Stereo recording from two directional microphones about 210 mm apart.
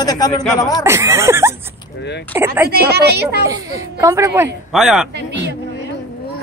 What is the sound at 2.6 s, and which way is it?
Speech, 50° right (ahead or behind).